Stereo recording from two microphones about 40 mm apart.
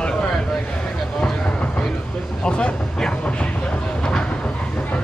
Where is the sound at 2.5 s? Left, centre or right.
Left.